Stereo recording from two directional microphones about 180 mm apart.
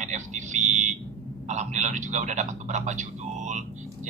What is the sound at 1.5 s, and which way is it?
A man's voice, 40° right (ahead or behind).